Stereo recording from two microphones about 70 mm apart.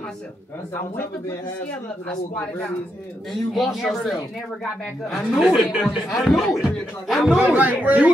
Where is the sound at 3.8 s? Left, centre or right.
Centre.